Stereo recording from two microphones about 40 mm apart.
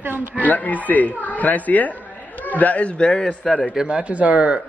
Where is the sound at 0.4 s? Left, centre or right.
Left.